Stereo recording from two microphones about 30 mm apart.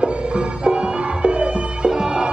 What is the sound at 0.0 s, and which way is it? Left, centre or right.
Music, right.